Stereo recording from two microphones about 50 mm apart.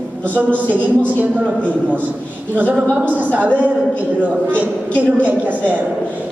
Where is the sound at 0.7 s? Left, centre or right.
Right.